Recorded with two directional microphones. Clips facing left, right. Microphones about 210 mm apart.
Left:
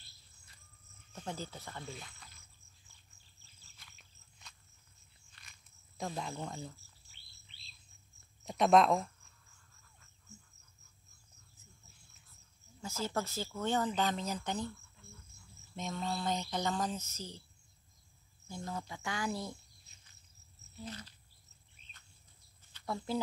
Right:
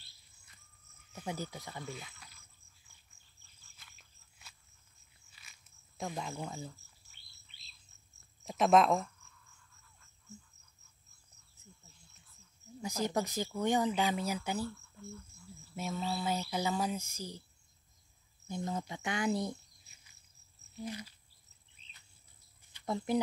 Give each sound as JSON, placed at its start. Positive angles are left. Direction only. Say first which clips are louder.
{"t": 1.1, "sound": "speech", "louder": "right 2 dB", "side_deg": -10}
{"t": 5.4, "sound": "cricket", "louder": "left 1 dB", "side_deg": -5}
{"t": 5.9, "sound": "speech", "louder": "even", "side_deg": 0}
{"t": 8.5, "sound": "speech", "louder": "even", "side_deg": 0}
{"t": 12.8, "sound": "speech", "louder": "right 3 dB", "side_deg": -15}
{"t": 15.7, "sound": "speech", "louder": "right 1 dB", "side_deg": -5}
{"t": 18.5, "sound": "speech", "louder": "right 4 dB", "side_deg": -20}
{"t": 20.8, "sound": "speech", "louder": "right 5 dB", "side_deg": -10}
{"t": 22.7, "sound": "speech", "louder": "right 4 dB", "side_deg": -15}